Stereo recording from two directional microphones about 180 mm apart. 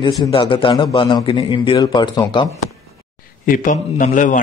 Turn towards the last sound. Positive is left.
turn(degrees=45)  # may be behind; listen again after turning